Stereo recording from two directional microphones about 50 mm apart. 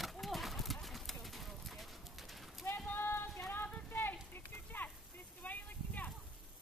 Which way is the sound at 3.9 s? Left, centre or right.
Left.